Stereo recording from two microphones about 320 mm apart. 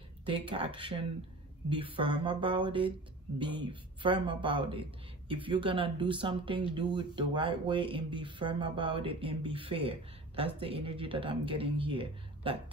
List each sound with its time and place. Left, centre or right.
0.2 s speech: centre